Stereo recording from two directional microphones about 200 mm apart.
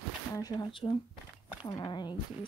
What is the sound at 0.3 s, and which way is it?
Speech, 20° left (ahead or behind).